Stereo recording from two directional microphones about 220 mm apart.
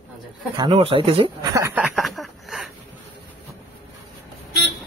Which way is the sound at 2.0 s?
Centre (ahead or behind).